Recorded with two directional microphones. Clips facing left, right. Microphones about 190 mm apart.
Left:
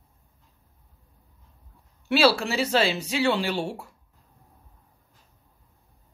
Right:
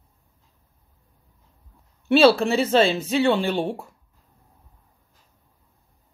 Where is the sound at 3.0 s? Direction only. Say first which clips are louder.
Right 4 dB; 20° right (ahead or behind).